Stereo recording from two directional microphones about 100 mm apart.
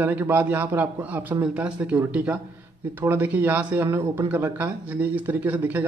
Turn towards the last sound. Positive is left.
turn(degrees=-15)  # may be behind; listen again after turning